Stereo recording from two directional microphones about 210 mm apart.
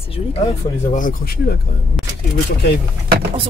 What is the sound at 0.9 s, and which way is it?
Speech, 40° left (ahead or behind).